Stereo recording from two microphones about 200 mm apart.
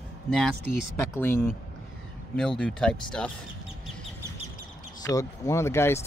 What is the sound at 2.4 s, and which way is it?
Speech, 5° left (ahead or behind).